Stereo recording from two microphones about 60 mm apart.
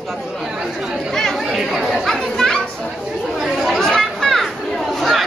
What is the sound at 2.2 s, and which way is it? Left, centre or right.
Children playing, centre.